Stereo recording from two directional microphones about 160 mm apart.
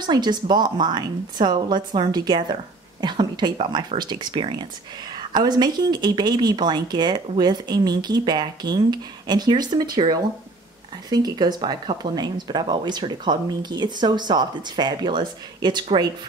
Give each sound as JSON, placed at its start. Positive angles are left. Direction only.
{"t": 0.0, "sound": "speech", "side_deg": -25}